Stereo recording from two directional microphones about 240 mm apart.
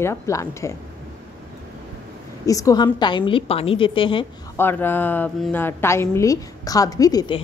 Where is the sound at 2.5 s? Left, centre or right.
Centre.